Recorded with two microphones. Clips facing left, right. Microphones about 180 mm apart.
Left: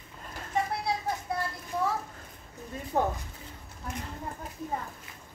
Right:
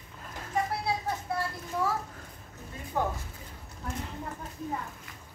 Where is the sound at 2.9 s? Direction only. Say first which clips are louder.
Left 3 dB; 45° left (ahead or behind).